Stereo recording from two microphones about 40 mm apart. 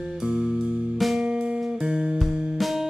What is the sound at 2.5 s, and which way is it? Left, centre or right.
Music, centre.